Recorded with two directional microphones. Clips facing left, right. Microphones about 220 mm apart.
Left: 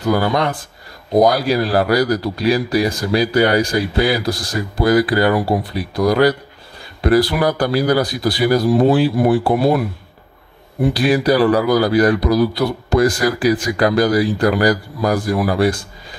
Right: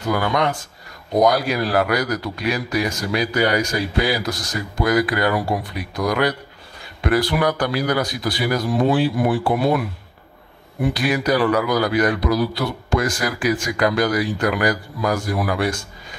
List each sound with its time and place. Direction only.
0.1 s speech: 35° left (ahead or behind)